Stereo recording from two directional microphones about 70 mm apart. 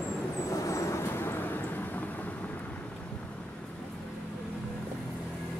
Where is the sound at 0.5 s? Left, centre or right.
Left.